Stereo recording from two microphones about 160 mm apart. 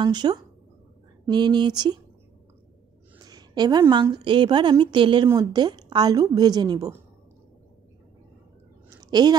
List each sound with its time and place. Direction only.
0.0 s a woman's voice: 25° right (ahead or behind)
3.2 s a sound: 25° right (ahead or behind)
3.9 s a woman's voice: 30° right (ahead or behind)
9.1 s a woman's voice: 25° right (ahead or behind)